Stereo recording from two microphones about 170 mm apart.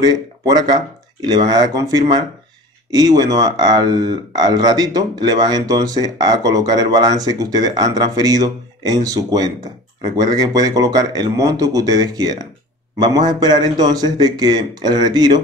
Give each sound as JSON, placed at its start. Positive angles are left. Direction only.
{"t": 0.0, "sound": "speech", "side_deg": -25}